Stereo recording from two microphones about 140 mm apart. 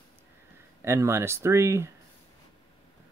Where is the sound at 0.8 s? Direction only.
20° right (ahead or behind).